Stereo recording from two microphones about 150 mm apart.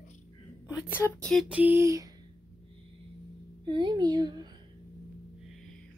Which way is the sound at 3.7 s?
30° right (ahead or behind).